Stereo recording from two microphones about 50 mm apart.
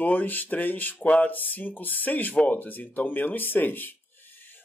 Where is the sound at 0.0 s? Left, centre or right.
Left.